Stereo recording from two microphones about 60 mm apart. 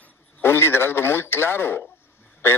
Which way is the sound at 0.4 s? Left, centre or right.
Left.